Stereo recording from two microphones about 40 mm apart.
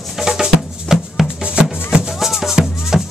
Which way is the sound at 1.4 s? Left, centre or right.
Right.